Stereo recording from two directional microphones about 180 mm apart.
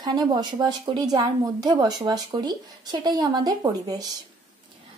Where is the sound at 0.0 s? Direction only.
25° right (ahead or behind).